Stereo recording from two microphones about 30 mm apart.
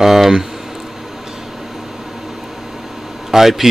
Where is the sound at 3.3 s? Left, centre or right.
Centre.